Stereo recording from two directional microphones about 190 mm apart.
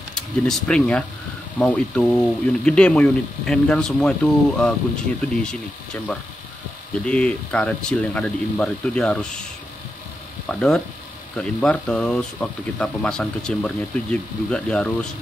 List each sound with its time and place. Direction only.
0.1 s speech: 5° left (ahead or behind)
7.1 s speech: 5° left (ahead or behind)
10.5 s speech: 5° left (ahead or behind)